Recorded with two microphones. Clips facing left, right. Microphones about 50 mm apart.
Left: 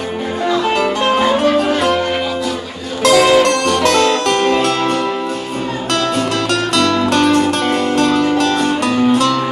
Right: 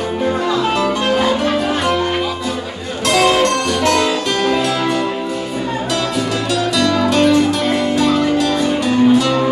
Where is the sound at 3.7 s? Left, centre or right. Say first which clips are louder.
Left 2 dB; left.